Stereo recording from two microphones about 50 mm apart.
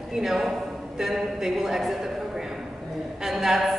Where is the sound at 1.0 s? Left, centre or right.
Centre.